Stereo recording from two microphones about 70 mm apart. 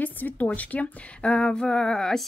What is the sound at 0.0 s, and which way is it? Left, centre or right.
Speech, left.